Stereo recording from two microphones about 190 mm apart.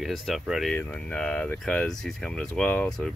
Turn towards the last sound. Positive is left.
turn(degrees=5)  # may be behind; listen again after turning